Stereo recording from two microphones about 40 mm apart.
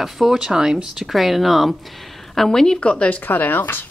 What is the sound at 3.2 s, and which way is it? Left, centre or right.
Speech, left.